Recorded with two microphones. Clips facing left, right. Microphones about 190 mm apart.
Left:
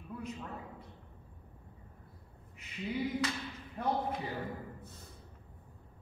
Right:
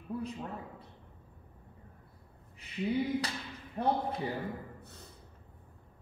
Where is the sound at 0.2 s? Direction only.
35° right (ahead or behind).